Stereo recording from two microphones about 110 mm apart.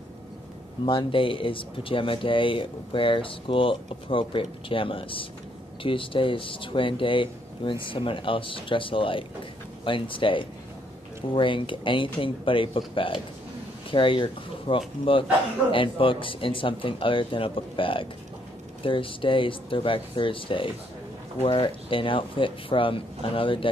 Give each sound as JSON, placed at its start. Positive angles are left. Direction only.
{"t": 0.8, "sound": "speech", "side_deg": 50}